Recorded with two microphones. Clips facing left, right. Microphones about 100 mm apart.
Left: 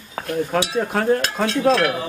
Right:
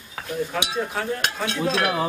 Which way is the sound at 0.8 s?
55° left (ahead or behind).